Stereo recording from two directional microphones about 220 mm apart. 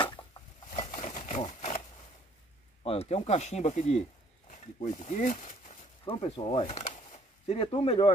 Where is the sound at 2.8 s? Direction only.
25° left (ahead or behind).